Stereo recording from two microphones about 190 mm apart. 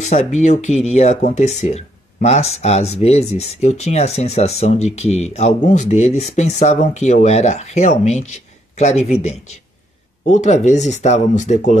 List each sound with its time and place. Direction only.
0.0 s speech: 35° left (ahead or behind)